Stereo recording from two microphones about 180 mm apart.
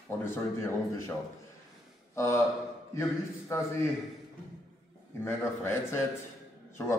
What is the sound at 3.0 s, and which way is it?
Speech, 15° left (ahead or behind).